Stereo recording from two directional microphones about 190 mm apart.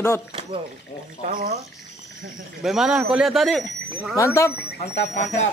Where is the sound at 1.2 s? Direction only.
40° right (ahead or behind).